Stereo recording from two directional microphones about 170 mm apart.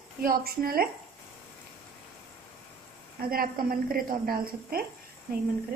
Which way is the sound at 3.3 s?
60° right (ahead or behind).